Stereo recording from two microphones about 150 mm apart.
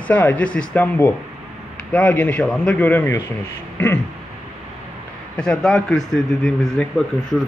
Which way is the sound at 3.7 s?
15° left (ahead or behind).